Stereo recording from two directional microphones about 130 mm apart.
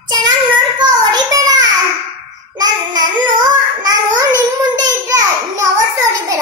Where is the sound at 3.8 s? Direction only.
25° right (ahead or behind).